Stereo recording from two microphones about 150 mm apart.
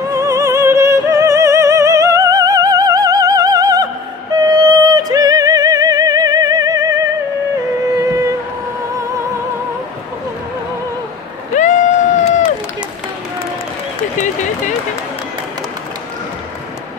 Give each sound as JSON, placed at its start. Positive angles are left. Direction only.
{"t": 0.0, "sound": "music", "side_deg": -20}
{"t": 8.0, "sound": "music", "side_deg": -20}
{"t": 11.5, "sound": "crowd", "side_deg": 55}
{"t": 14.1, "sound": "run", "side_deg": 55}